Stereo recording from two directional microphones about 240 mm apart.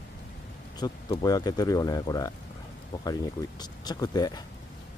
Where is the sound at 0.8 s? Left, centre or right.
Centre.